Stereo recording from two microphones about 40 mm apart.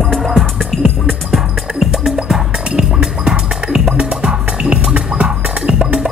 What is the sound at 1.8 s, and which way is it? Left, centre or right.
Music, centre.